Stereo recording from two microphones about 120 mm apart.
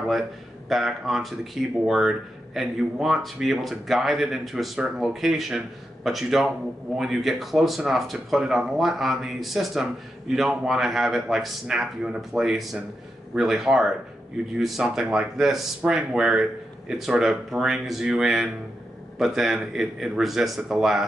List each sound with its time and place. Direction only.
0.7 s speech: centre (ahead or behind)